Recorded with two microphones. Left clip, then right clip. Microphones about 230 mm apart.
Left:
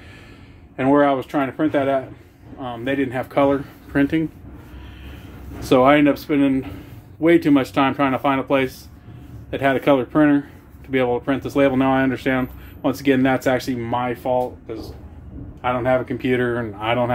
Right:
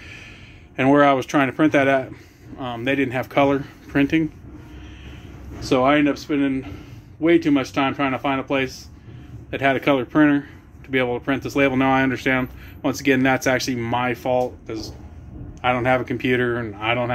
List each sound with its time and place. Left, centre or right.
0.7 s speech: centre
2.6 s speech: centre
5.6 s speech: centre